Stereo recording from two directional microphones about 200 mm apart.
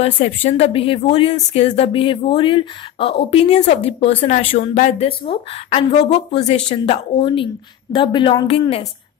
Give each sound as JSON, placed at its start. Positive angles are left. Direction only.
{"t": 0.0, "sound": "speech", "side_deg": 30}